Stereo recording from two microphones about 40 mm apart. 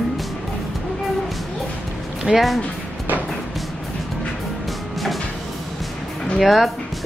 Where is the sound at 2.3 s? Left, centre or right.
Centre.